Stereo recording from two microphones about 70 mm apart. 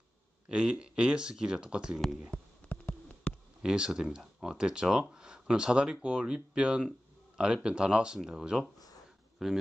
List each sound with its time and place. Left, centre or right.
0.5 s speech: centre
2.7 s a sound: left
3.6 s speech: centre